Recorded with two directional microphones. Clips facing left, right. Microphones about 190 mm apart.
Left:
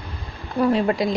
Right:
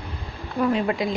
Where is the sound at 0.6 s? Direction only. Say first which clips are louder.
Left 3 dB; 35° left (ahead or behind).